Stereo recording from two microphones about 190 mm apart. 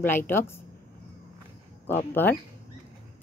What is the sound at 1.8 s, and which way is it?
Speech, 10° left (ahead or behind).